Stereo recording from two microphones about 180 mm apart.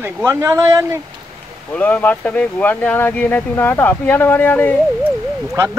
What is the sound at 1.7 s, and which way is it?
Speech, 10° left (ahead or behind).